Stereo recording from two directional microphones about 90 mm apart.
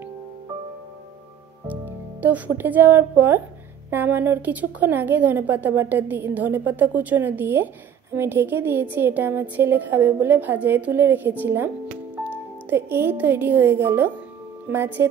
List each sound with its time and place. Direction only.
1.7 s a woman's voice: 20° right (ahead or behind)